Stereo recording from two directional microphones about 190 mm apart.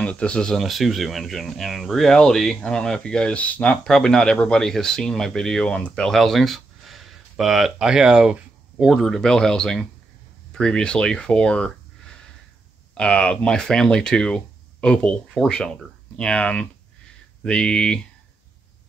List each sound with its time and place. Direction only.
0.0 s speech: 5° left (ahead or behind)
12.9 s speech: 5° left (ahead or behind)